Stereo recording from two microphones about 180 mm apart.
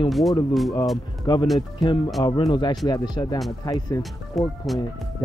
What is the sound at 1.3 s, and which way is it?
Speech, 25° left (ahead or behind).